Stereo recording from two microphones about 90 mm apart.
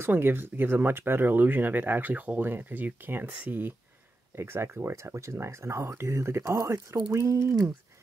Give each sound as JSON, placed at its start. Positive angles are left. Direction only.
{"t": 0.0, "sound": "speech", "side_deg": -25}